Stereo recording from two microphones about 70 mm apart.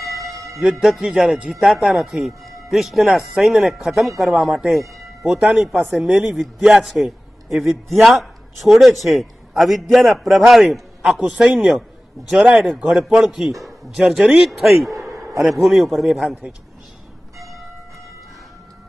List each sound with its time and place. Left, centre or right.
0.2 s music: right
0.7 s a man's voice: centre
1.5 s a man's voice: centre
13.0 s speech: centre